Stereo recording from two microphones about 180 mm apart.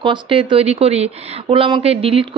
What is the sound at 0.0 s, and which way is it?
Speech, 25° right (ahead or behind).